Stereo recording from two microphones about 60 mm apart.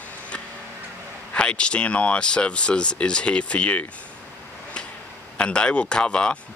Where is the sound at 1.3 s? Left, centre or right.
Centre.